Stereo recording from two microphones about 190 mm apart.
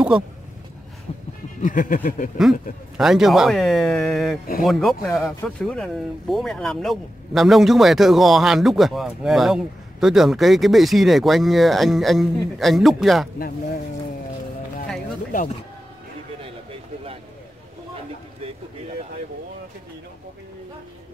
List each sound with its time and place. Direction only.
1.1 s a sound: 30° left (ahead or behind)
1.6 s speech: 45° left (ahead or behind)
3.0 s speech: centre (ahead or behind)